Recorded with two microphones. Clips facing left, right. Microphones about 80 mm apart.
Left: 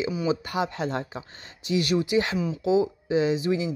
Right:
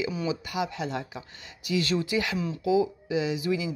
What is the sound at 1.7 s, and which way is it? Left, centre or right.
A woman's voice, left.